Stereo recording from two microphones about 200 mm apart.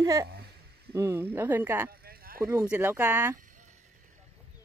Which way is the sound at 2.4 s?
15° right (ahead or behind).